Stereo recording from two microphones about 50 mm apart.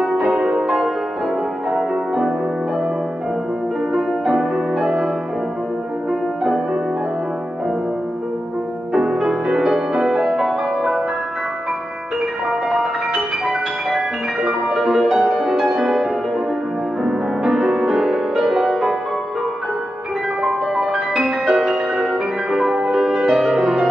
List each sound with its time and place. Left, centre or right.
0.3 s music: centre
3.9 s music: centre
6.4 s music: centre
8.9 s music: centre
12.4 s music: centre
20.4 s music: centre